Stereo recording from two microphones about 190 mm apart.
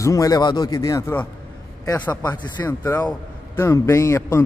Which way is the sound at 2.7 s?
10° left (ahead or behind).